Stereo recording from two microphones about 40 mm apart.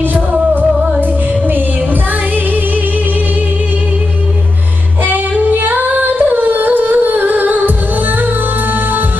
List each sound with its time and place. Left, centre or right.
0.0 s music: right
5.0 s singing: right